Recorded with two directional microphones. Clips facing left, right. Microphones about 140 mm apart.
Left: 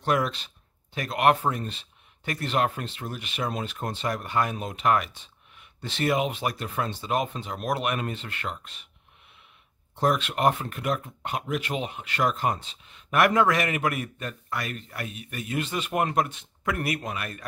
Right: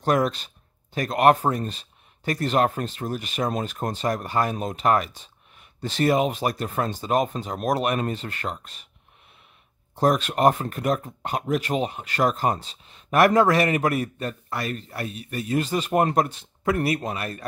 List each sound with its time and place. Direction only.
0.0 s speech: 40° right (ahead or behind)
9.9 s speech: 40° right (ahead or behind)